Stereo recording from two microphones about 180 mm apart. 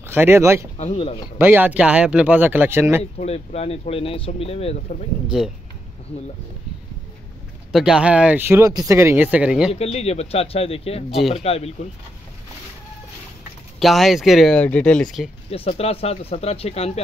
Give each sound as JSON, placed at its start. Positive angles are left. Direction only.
{"t": 0.0, "sound": "speech", "side_deg": -10}
{"t": 0.7, "sound": "speech", "side_deg": 35}
{"t": 1.4, "sound": "speech", "side_deg": -10}
{"t": 3.0, "sound": "speech", "side_deg": 35}
{"t": 5.3, "sound": "speech", "side_deg": -5}
{"t": 7.7, "sound": "speech", "side_deg": -5}
{"t": 9.7, "sound": "speech", "side_deg": 35}
{"t": 11.1, "sound": "speech", "side_deg": 0}
{"t": 11.3, "sound": "speech", "side_deg": 35}
{"t": 13.7, "sound": "speech", "side_deg": 0}
{"t": 15.5, "sound": "speech", "side_deg": 35}